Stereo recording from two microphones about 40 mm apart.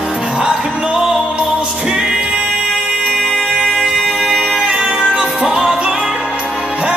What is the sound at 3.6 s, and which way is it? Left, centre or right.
Music, centre.